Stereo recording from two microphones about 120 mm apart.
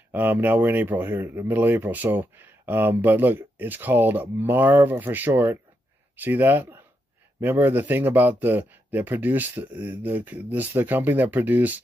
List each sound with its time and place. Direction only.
0.1 s speech: 15° right (ahead or behind)